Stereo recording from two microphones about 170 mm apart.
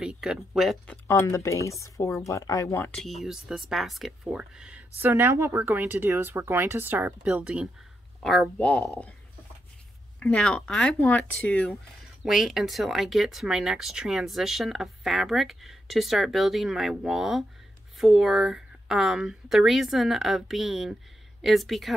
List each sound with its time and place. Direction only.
0.0 s speech: 5° right (ahead or behind)
1.0 s speech: 20° left (ahead or behind)
10.2 s speech: 5° left (ahead or behind)